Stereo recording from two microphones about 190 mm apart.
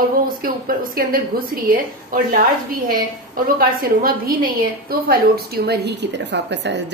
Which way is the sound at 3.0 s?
50° right (ahead or behind).